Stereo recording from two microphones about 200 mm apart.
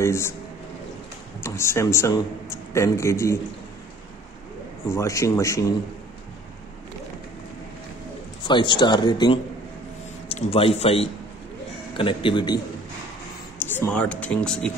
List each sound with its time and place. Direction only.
0.0 s speech: 15° left (ahead or behind)
1.4 s speech: 15° left (ahead or behind)
4.8 s speech: 15° left (ahead or behind)
8.5 s speech: 25° left (ahead or behind)
13.6 s speech: 10° left (ahead or behind)